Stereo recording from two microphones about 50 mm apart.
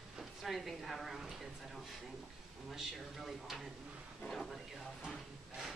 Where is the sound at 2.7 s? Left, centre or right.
Centre.